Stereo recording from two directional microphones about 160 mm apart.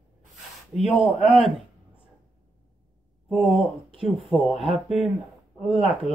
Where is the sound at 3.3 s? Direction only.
Centre (ahead or behind).